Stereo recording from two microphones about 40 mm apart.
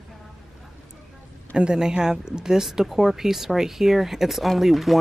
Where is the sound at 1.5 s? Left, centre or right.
Right.